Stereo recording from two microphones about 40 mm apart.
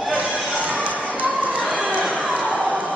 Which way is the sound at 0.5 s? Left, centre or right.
Right.